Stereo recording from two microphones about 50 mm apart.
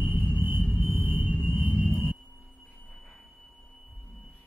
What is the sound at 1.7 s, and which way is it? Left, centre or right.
Sonar, right.